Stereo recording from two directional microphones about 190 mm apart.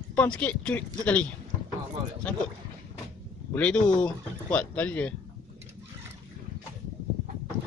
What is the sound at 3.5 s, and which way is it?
Speech, 5° left (ahead or behind).